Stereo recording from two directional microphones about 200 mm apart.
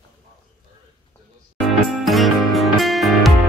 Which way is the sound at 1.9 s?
Centre (ahead or behind).